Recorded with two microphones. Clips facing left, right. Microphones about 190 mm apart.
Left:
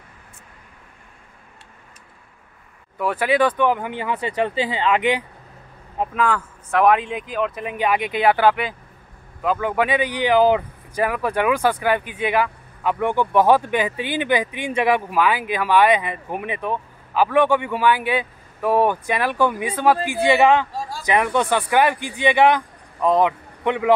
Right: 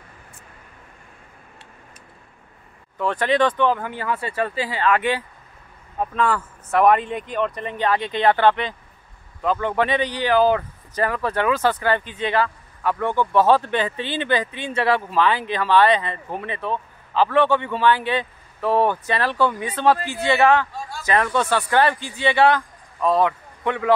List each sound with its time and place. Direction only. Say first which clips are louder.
3.0 s speech: left 1 dB; 10° left (ahead or behind)
6.1 s speech: even; centre (ahead or behind); by 23.9 s 15° left (ahead or behind)